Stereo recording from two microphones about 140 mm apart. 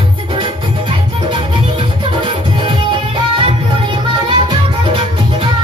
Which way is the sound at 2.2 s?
35° right (ahead or behind).